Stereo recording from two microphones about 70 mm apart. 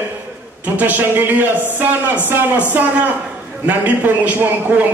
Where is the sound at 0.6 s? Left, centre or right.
Right.